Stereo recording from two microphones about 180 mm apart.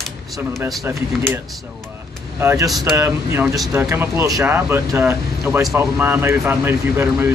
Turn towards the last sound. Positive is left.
turn(degrees=-10)  # may be behind; listen again after turning